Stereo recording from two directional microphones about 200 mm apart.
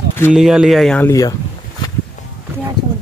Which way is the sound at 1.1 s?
20° left (ahead or behind).